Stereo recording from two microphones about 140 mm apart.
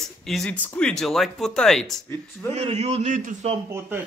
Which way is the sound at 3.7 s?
15° right (ahead or behind).